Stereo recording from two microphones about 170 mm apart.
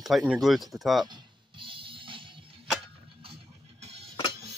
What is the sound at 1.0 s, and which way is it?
Music, 30° right (ahead or behind).